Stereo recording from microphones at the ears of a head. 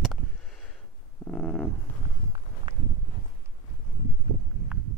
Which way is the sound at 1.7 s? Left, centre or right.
Right.